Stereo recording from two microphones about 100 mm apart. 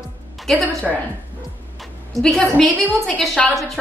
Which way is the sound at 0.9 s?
5° right (ahead or behind).